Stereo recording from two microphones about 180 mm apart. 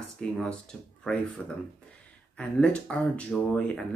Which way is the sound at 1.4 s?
5° left (ahead or behind).